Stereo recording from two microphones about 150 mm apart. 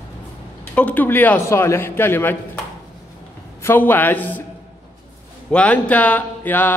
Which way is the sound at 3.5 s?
15° left (ahead or behind).